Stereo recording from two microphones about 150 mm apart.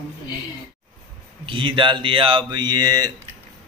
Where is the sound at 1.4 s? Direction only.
35° right (ahead or behind).